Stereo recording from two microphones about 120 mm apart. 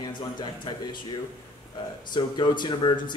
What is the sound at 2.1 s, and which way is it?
Speech, 40° left (ahead or behind).